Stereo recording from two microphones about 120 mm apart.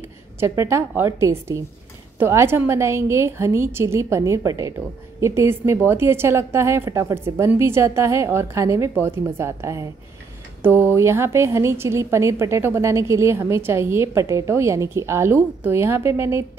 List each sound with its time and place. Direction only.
0.4 s a woman's voice: 20° right (ahead or behind)